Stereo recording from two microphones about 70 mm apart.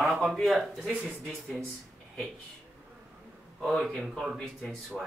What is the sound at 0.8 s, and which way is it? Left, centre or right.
Speech, right.